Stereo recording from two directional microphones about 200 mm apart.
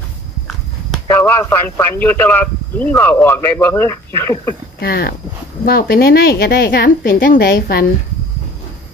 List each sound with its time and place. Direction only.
1.0 s speech: 10° left (ahead or behind)
4.7 s a woman's voice: 50° left (ahead or behind)